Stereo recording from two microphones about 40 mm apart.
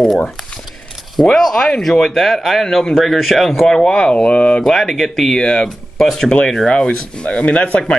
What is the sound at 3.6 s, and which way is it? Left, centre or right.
Speech, centre.